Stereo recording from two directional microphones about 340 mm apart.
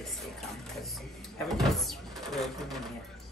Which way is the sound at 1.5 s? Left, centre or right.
Centre.